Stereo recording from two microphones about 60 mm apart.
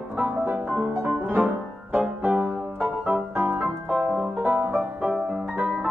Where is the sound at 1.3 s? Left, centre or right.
Right.